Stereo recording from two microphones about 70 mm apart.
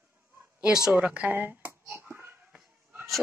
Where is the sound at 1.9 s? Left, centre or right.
Right.